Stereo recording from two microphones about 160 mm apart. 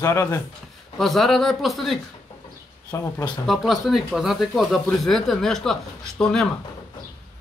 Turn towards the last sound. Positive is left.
turn(degrees=5)  # may be behind; listen again after turning